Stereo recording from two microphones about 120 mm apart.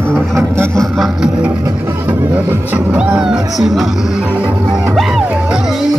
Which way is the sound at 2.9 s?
5° right (ahead or behind).